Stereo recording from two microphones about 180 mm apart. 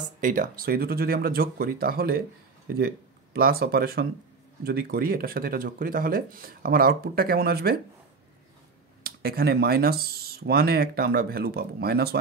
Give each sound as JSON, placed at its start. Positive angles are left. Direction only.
{"t": 0.2, "sound": "speech", "side_deg": -50}
{"t": 3.3, "sound": "speech", "side_deg": -55}
{"t": 9.0, "sound": "speech", "side_deg": -55}